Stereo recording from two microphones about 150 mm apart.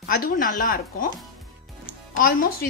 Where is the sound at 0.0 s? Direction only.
75° left (ahead or behind).